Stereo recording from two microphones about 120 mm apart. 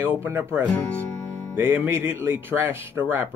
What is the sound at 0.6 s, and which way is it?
Speech, 10° left (ahead or behind).